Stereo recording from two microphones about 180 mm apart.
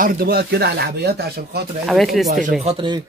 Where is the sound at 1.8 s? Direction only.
Centre (ahead or behind).